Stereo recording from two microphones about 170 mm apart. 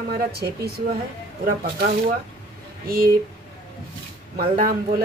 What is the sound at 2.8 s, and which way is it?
Speech, 60° right (ahead or behind).